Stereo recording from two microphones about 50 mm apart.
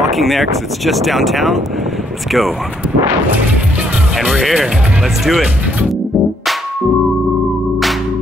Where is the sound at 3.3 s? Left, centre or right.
Right.